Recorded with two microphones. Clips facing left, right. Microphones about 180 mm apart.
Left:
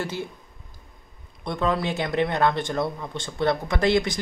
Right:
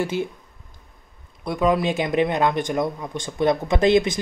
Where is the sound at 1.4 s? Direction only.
10° right (ahead or behind).